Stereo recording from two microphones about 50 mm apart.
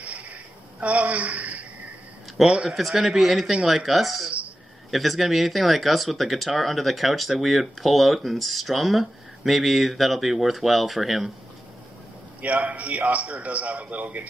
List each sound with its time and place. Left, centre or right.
0.7 s a woman's voice: right
2.7 s speech: centre
12.4 s a man's voice: right